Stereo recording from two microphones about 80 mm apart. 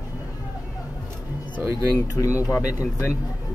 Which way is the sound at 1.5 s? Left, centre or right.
Right.